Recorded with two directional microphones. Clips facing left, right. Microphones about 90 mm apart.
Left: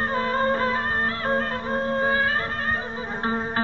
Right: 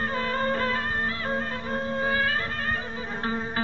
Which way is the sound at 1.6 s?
40° left (ahead or behind).